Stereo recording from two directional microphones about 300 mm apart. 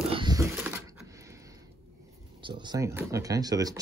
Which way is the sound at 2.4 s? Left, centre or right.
Centre.